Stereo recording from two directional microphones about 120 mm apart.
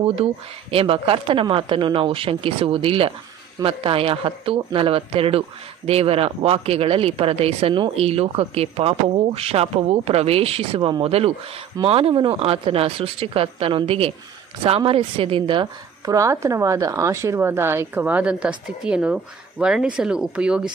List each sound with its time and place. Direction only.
0.0 s a woman's voice: 50° right (ahead or behind)
16.1 s a woman's voice: 25° right (ahead or behind); by 20.6 s 10° right (ahead or behind)